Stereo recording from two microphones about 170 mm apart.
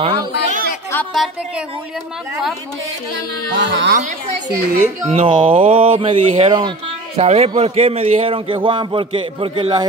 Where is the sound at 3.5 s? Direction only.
90° right.